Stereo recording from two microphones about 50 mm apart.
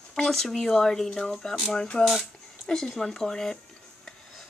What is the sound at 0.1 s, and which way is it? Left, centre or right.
Speech, centre.